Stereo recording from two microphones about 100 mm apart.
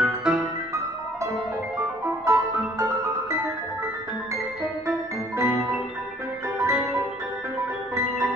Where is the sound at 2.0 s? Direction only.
30° right (ahead or behind).